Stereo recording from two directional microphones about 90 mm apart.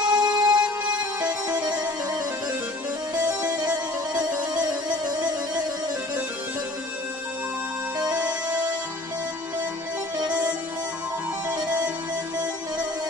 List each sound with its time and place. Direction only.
0.1 s music: 50° right (ahead or behind)
10.2 s music: 15° right (ahead or behind)